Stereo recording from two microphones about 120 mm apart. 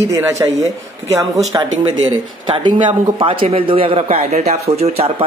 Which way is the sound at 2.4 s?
40° right (ahead or behind).